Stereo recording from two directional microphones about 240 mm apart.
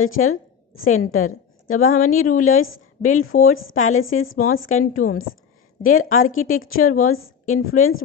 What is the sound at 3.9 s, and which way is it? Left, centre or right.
Speech, left.